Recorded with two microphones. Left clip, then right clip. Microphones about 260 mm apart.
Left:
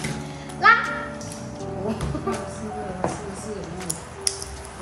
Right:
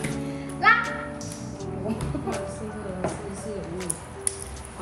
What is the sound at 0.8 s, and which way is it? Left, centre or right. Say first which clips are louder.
Music: left 2 dB; centre.